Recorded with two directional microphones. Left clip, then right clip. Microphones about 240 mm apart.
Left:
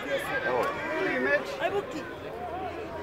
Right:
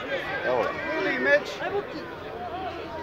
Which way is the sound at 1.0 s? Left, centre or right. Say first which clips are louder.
Right 5 dB; right.